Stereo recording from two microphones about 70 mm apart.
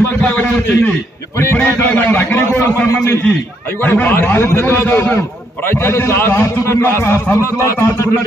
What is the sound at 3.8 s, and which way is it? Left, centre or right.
A man's voice, left.